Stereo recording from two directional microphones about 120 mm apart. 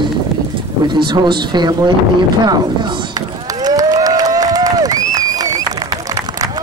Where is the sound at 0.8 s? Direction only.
40° right (ahead or behind).